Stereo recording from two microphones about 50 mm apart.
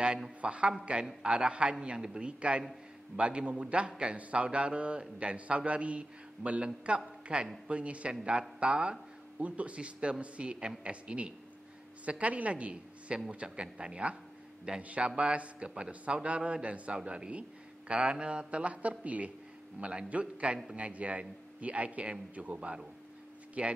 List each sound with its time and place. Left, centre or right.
0.4 s a man's voice: right
9.4 s a man's voice: right